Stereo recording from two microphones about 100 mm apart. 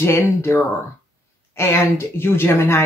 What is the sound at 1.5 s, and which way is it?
Speech, 25° left (ahead or behind).